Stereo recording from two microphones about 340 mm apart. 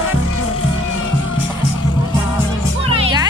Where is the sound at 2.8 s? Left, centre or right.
Centre.